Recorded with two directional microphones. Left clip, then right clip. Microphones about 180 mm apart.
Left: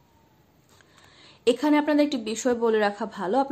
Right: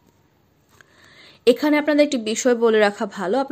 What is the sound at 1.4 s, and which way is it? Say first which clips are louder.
A woman's voice: right 5 dB; 20° right (ahead or behind).